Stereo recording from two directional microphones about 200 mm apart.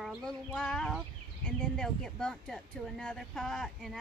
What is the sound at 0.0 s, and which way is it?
Speech, centre (ahead or behind).